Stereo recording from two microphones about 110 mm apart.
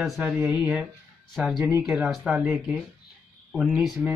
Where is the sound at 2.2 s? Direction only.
10° right (ahead or behind).